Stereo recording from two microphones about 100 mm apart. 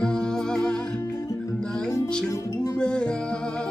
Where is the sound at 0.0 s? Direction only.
5° left (ahead or behind).